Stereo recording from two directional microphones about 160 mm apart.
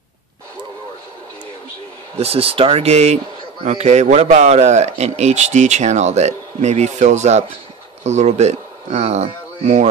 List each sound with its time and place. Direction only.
2.1 s speech: 40° right (ahead or behind)